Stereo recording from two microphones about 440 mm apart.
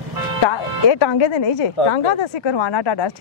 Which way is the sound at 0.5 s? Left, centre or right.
Left.